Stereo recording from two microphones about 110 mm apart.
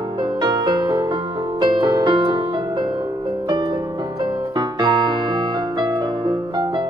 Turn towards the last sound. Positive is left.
turn(degrees=-45)  # may be behind; listen again after turning